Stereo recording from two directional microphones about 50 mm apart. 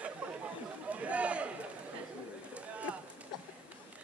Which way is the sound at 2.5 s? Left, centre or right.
Right.